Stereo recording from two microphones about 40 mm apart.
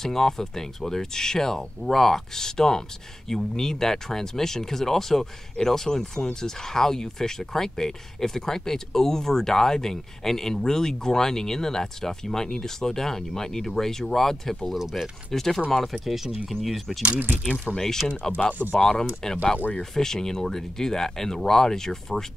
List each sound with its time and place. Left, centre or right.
0.0 s speech: centre
14.8 s speech: centre
15.3 s speech: centre
17.7 s speech: centre
19.3 s speech: left
19.8 s speech: centre